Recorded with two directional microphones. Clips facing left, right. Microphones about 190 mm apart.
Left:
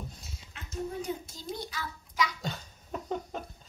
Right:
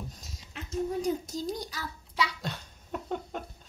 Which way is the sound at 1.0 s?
40° right (ahead or behind).